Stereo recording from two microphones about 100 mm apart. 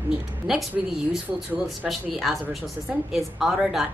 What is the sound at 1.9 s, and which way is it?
A woman's voice, centre (ahead or behind).